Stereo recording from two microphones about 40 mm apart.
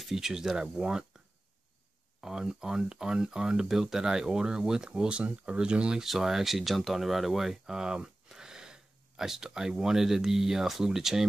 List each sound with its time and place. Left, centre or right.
0.0 s speech: centre
2.2 s speech: centre
6.0 s speech: centre